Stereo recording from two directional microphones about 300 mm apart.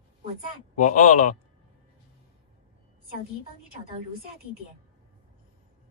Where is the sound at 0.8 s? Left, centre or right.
Left.